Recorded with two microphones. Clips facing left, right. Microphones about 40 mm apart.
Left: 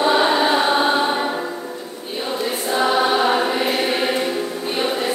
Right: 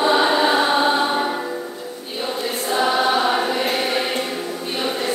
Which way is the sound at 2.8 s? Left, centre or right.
Centre.